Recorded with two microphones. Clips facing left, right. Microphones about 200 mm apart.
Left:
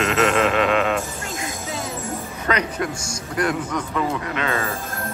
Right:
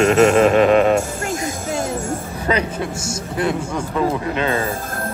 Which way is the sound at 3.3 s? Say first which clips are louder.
Right 1 dB; 25° right (ahead or behind).